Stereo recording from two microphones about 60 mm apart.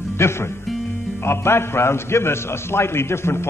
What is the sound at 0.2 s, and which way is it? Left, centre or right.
A man's voice, left.